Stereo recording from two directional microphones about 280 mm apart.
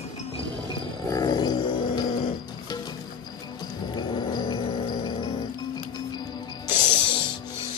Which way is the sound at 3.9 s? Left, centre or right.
Centre.